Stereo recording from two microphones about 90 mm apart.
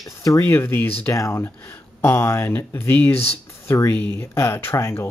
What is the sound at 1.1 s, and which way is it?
Speech, 40° left (ahead or behind).